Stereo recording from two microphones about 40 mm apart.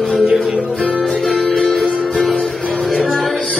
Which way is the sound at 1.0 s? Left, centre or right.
Centre.